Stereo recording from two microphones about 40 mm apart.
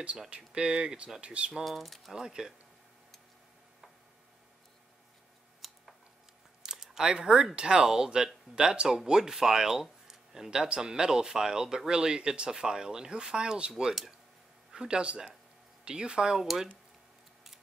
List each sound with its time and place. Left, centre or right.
0.6 s speech: right
1.5 s speech: centre
2.1 s speech: centre
5.6 s a sound: centre
6.6 s a sound: centre
7.5 s speech: right